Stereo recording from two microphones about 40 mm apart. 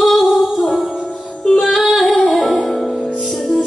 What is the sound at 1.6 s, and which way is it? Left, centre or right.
Female singing, centre.